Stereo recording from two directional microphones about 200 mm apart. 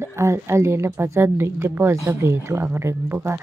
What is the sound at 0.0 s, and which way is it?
A woman's voice, 15° right (ahead or behind).